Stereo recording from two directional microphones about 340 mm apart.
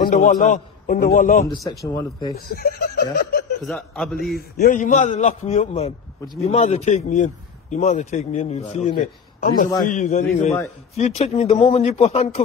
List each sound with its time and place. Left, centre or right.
0.0 s a man's voice: left
1.4 s a man's voice: centre
2.3 s a man's voice: left
3.6 s a man's voice: centre
4.4 s a man's voice: left